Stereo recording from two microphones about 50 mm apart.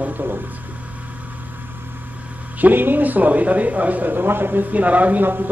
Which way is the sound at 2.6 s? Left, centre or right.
Right.